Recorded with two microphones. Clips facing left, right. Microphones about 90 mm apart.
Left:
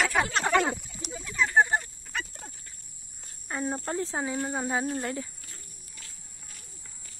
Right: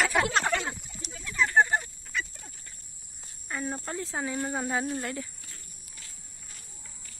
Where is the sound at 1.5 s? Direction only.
15° left (ahead or behind).